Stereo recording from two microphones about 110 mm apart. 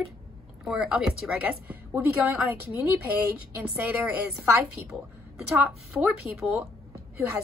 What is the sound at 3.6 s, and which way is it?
Speech, 15° right (ahead or behind).